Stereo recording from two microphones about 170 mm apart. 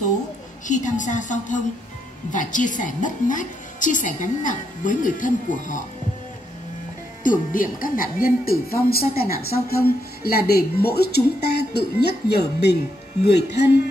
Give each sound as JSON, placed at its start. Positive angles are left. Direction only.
{"t": 0.7, "sound": "a woman's voice", "side_deg": 45}
{"t": 7.2, "sound": "a woman's voice", "side_deg": 55}